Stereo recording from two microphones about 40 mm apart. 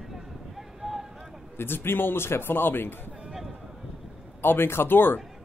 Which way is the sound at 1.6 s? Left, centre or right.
Left.